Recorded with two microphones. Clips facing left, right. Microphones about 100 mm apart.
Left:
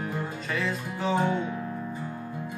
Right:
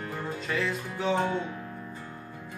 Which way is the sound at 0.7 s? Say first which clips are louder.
Left 1 dB; 5° left (ahead or behind).